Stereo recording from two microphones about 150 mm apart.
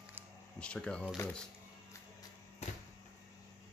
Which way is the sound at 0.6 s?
5° left (ahead or behind).